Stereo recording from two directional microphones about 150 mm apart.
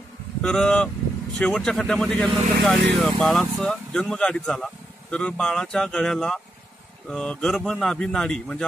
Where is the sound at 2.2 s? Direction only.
45° right (ahead or behind).